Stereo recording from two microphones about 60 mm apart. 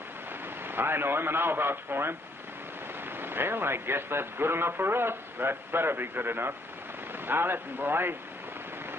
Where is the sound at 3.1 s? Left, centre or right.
Right.